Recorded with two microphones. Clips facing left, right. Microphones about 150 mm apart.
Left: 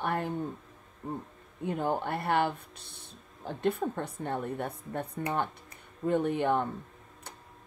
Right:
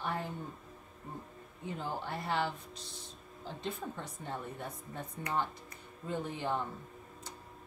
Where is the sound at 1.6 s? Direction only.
60° left (ahead or behind).